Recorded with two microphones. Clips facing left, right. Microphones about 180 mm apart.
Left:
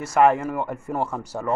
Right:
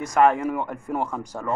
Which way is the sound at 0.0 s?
5° left (ahead or behind).